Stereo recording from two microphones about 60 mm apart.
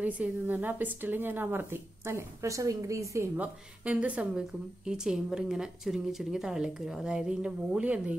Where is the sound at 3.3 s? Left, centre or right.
Right.